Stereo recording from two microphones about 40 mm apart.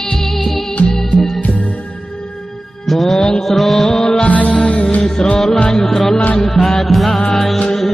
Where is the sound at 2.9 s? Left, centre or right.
Centre.